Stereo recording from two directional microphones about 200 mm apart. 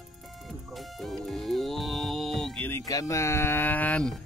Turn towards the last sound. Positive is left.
turn(degrees=5)  # may be behind; listen again after turning